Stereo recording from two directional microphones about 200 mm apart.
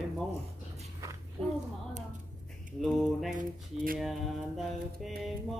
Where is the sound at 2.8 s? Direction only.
Centre (ahead or behind).